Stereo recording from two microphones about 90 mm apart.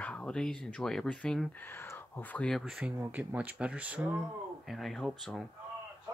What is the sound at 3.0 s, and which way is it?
Speech, 20° right (ahead or behind).